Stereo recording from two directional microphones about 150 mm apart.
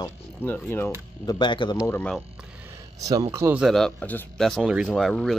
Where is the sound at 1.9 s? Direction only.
10° left (ahead or behind).